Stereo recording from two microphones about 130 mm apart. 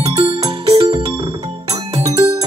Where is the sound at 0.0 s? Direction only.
45° right (ahead or behind).